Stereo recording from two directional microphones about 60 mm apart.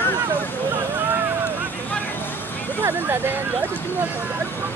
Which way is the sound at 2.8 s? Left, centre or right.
Right.